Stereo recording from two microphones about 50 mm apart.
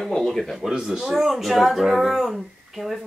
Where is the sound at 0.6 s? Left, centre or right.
Centre.